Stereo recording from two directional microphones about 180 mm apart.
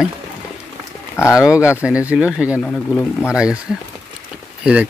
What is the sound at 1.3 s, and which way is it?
Speech, 5° right (ahead or behind).